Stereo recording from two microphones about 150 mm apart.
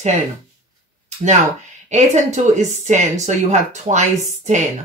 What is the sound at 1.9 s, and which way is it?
Speech, 50° right (ahead or behind).